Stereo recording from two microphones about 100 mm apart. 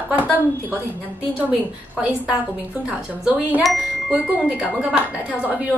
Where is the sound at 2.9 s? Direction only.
15° right (ahead or behind).